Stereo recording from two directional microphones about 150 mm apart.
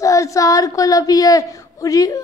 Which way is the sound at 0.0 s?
20° left (ahead or behind).